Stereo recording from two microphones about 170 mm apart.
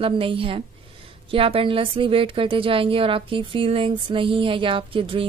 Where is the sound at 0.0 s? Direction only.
30° right (ahead or behind).